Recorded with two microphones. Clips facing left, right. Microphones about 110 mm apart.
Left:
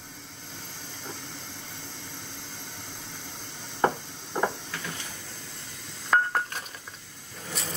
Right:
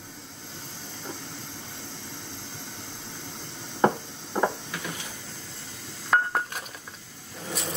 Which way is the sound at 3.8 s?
15° right (ahead or behind).